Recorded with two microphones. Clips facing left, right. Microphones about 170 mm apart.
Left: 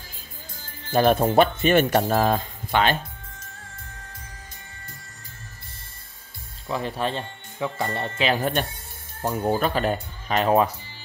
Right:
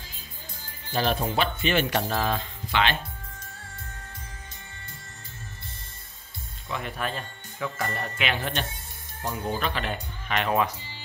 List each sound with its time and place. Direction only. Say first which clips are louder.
0.9 s speech: left 8 dB; 50° left (ahead or behind)
6.7 s speech: left 5 dB; 30° left (ahead or behind)